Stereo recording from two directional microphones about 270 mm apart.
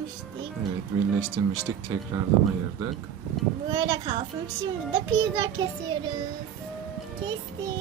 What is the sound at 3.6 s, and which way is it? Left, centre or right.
A child's voice, centre.